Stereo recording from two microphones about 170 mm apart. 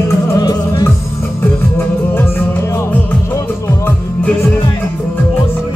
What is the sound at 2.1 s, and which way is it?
Music, 15° left (ahead or behind).